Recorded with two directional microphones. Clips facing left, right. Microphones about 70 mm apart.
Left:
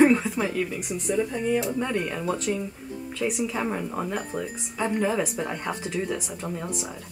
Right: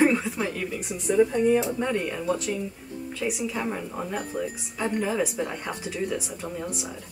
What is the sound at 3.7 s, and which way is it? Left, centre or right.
Speech, centre.